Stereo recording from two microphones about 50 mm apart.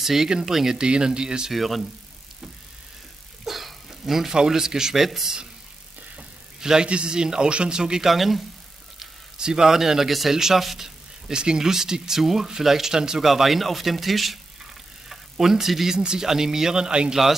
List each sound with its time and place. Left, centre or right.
0.0 s speech: centre
1.5 s speech: centre
3.4 s speech: centre
6.6 s speech: centre
8.1 s speech: centre
9.4 s speech: centre